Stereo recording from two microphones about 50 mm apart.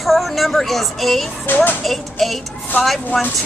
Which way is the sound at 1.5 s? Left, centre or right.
Left.